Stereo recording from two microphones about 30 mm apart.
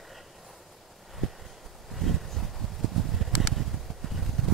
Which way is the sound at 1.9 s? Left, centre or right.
Centre.